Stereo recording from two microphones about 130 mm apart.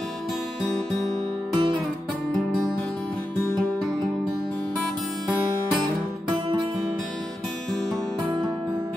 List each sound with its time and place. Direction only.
1.5 s guitar: 35° right (ahead or behind)